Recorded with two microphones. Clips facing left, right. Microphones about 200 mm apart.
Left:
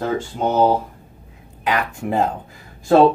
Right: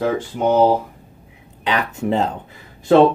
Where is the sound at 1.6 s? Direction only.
25° right (ahead or behind).